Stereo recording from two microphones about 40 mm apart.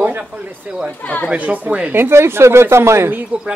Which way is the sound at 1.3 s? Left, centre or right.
Right.